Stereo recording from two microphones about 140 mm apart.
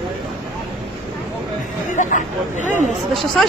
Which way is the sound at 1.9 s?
65° left (ahead or behind).